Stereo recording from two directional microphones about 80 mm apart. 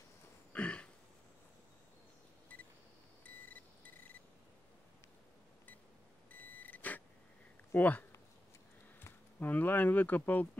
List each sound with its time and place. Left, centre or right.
0.5 s a sound: centre
2.5 s cash register: left
3.3 s beep: left
6.3 s vehicle: left
7.7 s speech: centre
9.0 s speech: left